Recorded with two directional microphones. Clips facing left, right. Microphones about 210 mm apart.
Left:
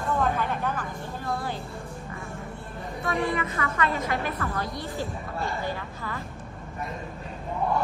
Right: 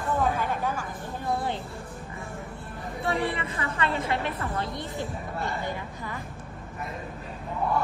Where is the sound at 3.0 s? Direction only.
30° right (ahead or behind).